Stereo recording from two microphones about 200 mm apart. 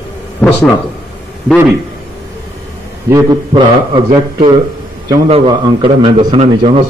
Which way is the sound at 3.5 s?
25° right (ahead or behind).